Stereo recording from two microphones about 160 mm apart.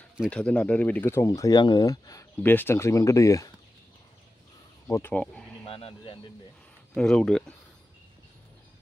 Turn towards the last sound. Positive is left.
turn(degrees=5)  # may be behind; listen again after turning